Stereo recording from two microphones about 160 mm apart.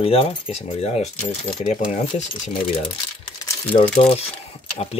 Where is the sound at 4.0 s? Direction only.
40° left (ahead or behind).